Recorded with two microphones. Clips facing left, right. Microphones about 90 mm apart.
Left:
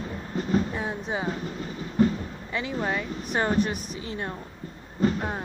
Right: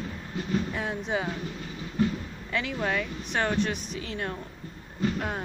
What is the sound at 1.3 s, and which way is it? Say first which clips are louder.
Train: left 3 dB; 35° left (ahead or behind).